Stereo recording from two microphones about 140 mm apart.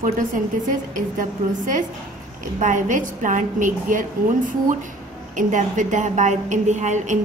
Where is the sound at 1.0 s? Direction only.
70° right (ahead or behind).